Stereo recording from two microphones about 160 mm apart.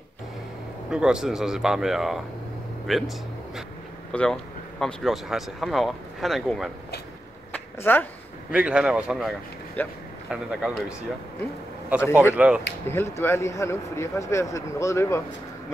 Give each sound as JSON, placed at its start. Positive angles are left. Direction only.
{"t": 0.8, "sound": "speech", "side_deg": -5}
{"t": 4.1, "sound": "speech", "side_deg": 5}
{"t": 7.5, "sound": "a sound", "side_deg": 10}
{"t": 8.5, "sound": "a man's voice", "side_deg": -10}
{"t": 9.8, "sound": "speech", "side_deg": 10}
{"t": 10.3, "sound": "a man's voice", "side_deg": -5}
{"t": 12.8, "sound": "speech", "side_deg": 15}